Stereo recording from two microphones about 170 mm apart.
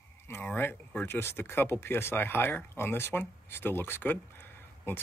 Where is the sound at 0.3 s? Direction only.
10° left (ahead or behind).